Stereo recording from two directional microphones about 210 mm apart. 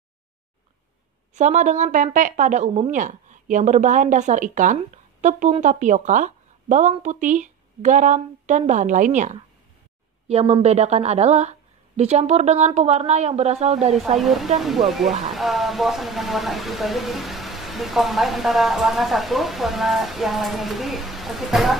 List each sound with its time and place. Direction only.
1.3 s speech: 35° right (ahead or behind)
13.9 s speech: centre (ahead or behind)